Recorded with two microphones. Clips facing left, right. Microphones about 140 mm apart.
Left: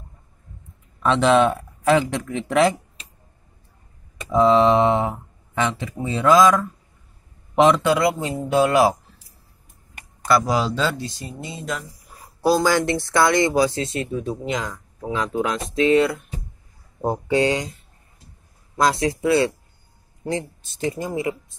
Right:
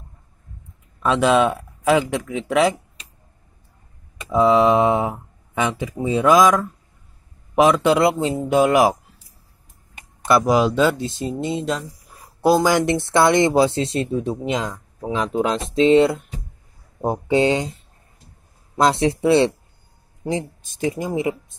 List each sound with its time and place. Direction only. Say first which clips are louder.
1.0 s speech: even; 5° right (ahead or behind)
4.2 s a man's voice: even; 5° right (ahead or behind)
7.8 s speech: right 3 dB; 20° right (ahead or behind)
10.2 s speech: right 3 dB; 20° right (ahead or behind)
15.3 s speech: right 4 dB; 25° right (ahead or behind)
18.8 s speech: right 2 dB; 25° right (ahead or behind)
20.2 s speech: right 2 dB; 15° right (ahead or behind)